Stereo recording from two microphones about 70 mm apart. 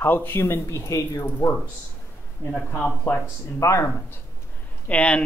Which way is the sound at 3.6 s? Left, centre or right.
Left.